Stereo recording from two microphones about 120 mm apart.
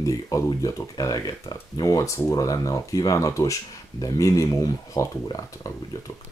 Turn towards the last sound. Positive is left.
turn(degrees=30)  # may be behind; listen again after turning